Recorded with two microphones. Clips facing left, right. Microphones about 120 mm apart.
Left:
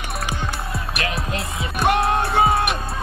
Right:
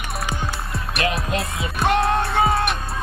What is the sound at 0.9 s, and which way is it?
Music, 25° right (ahead or behind).